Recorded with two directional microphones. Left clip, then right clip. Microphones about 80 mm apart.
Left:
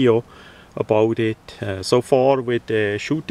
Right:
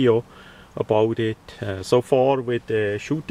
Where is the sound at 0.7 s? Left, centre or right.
Left.